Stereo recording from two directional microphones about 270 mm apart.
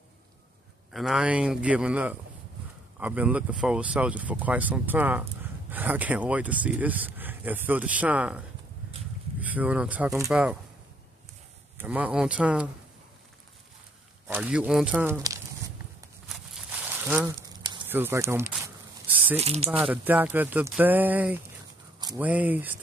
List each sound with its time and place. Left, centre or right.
0.9 s speech: centre
9.4 s speech: centre
11.8 s speech: centre
14.2 s speech: centre
16.3 s a sound: centre
19.3 s speech: right
19.7 s speech: centre